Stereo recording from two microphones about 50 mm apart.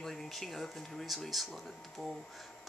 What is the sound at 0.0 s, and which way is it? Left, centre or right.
Speech, centre.